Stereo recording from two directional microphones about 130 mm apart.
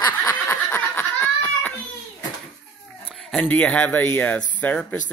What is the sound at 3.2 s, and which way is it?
Speech, 5° left (ahead or behind).